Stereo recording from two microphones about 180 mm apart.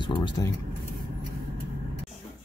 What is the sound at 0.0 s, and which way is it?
Speech, 25° left (ahead or behind).